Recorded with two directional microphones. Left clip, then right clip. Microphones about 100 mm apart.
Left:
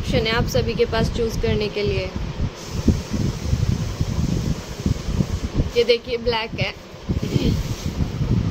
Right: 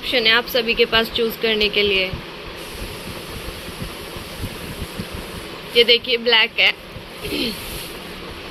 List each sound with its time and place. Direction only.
0.1 s speech: 20° left (ahead or behind)
5.8 s speech: 10° left (ahead or behind)